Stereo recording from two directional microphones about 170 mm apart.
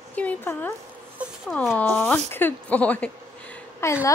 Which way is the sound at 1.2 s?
10° right (ahead or behind).